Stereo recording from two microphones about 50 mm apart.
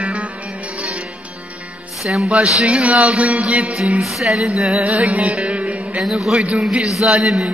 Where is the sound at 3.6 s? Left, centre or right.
Centre.